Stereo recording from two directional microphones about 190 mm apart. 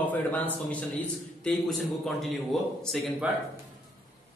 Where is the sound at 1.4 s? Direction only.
Centre (ahead or behind).